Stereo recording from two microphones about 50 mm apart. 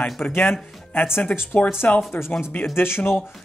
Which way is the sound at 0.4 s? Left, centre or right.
Left.